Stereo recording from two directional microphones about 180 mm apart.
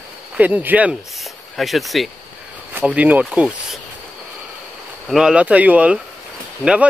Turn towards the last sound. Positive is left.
turn(degrees=-5)  # may be behind; listen again after turning